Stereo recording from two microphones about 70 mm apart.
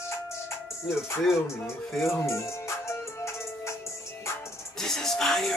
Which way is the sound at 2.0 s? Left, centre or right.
Left.